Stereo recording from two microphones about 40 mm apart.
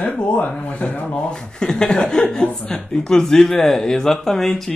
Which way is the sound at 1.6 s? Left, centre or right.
Centre.